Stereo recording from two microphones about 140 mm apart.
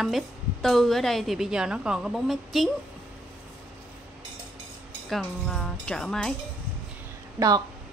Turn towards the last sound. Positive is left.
turn(degrees=-20)  # may be behind; listen again after turning